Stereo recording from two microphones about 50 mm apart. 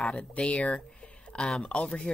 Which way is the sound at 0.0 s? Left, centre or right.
Left.